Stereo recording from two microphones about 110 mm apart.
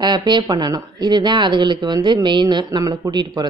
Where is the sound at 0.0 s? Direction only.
40° right (ahead or behind).